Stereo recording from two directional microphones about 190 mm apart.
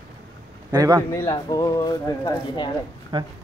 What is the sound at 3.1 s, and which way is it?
Speech, 25° right (ahead or behind).